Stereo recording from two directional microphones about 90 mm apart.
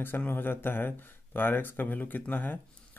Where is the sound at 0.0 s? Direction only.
20° left (ahead or behind).